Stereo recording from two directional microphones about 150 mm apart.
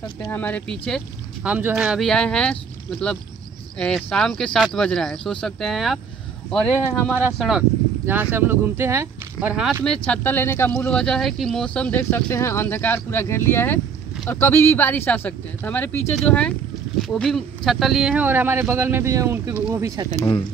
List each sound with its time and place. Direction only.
0.2 s speech: 10° left (ahead or behind)
1.4 s speech: 10° right (ahead or behind)
6.5 s speech: 10° left (ahead or behind)
7.3 s speech: 5° right (ahead or behind)
10.0 s speech: 10° left (ahead or behind); by 20.1 s 20° right (ahead or behind)
20.1 s speech: 25° left (ahead or behind)